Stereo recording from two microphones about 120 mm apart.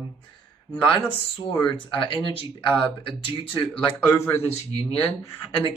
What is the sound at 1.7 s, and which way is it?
Speech, 45° left (ahead or behind).